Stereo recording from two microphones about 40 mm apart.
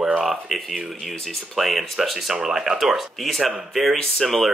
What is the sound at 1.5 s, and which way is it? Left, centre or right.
Speech, centre.